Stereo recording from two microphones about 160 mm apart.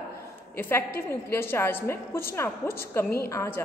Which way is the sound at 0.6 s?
15° left (ahead or behind).